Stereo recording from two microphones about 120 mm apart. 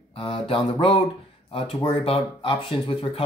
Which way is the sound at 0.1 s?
50° left (ahead or behind).